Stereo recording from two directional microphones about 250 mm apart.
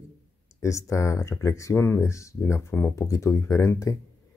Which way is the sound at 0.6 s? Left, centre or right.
Centre.